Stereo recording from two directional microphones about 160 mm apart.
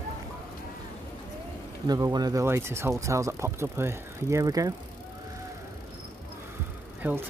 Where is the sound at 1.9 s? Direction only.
25° right (ahead or behind).